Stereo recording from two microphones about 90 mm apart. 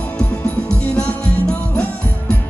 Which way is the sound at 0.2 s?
20° left (ahead or behind).